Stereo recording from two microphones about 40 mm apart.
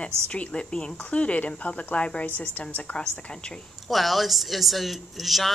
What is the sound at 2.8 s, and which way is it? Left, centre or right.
Speech, left.